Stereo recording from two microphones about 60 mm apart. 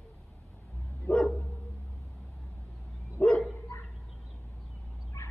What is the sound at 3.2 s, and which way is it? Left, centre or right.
Dog, left.